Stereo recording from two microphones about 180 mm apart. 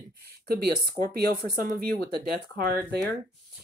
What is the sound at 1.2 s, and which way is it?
Speech, 25° left (ahead or behind).